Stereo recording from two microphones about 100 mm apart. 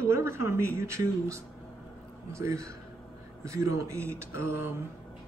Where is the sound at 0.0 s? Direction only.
25° right (ahead or behind).